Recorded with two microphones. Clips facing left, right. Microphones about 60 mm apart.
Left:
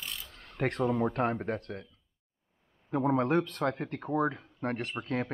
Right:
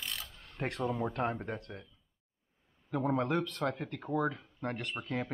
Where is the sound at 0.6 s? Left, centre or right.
Left.